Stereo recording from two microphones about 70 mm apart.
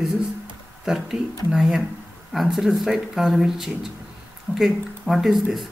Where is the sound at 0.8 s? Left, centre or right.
Centre.